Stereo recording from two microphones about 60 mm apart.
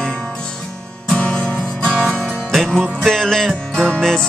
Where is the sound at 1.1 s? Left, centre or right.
Centre.